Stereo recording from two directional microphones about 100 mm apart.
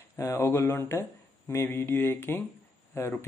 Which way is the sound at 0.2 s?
25° left (ahead or behind).